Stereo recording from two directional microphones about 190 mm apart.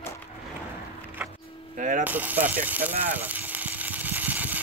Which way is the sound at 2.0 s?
10° right (ahead or behind).